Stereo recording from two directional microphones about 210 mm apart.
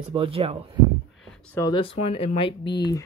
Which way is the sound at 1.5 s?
20° left (ahead or behind).